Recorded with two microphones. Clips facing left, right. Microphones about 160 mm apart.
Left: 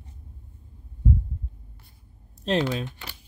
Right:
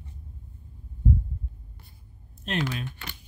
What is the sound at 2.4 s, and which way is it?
Speech, 30° left (ahead or behind).